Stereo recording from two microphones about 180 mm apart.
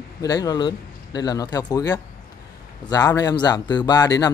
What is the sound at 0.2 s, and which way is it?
A man's voice, 20° left (ahead or behind).